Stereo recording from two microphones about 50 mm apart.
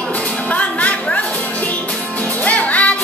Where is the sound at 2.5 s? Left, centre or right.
Left.